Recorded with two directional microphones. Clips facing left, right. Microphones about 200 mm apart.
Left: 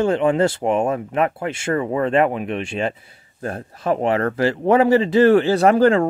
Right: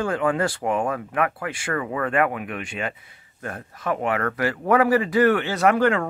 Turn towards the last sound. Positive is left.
turn(degrees=30)  # may be behind; listen again after turning